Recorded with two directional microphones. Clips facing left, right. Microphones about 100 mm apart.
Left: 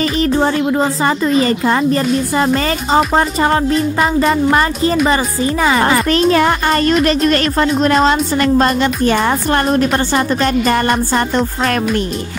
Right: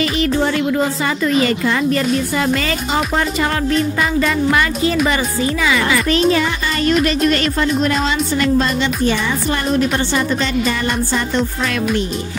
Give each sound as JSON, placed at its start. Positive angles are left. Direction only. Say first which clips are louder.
{"t": 0.0, "sound": "speech", "louder": "left 3 dB", "side_deg": 35}